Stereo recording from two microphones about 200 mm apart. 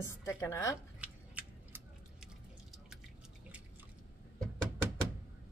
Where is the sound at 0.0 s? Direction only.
15° left (ahead or behind).